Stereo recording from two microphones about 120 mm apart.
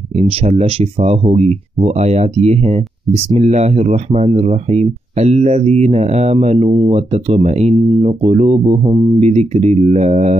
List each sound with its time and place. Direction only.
0.2 s speech: 60° right (ahead or behind)
7.7 s speech: 45° right (ahead or behind)
9.2 s speech: 60° right (ahead or behind)